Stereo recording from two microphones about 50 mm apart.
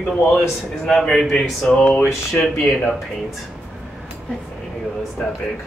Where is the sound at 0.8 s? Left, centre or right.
Centre.